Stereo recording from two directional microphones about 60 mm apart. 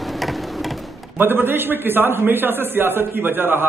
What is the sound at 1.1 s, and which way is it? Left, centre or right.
A man's voice, right.